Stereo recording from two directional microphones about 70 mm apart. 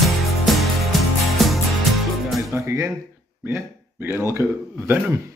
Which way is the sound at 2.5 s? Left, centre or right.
Right.